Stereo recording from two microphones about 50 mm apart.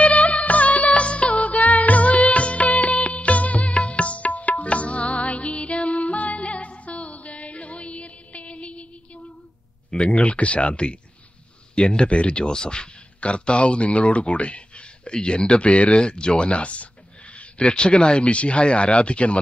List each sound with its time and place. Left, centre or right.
0.0 s music: left
9.8 s speech: left